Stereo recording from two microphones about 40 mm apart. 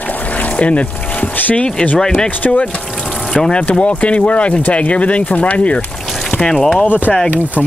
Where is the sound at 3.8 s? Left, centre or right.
Left.